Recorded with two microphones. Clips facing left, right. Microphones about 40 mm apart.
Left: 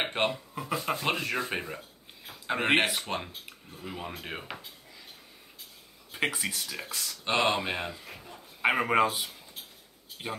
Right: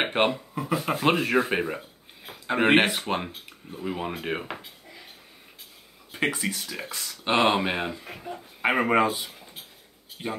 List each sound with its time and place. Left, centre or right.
0.0 s speech: right
0.6 s speech: centre
0.9 s speech: right
2.4 s speech: centre
6.1 s speech: centre
6.8 s speech: right
8.1 s speech: right
8.6 s speech: centre
10.2 s speech: centre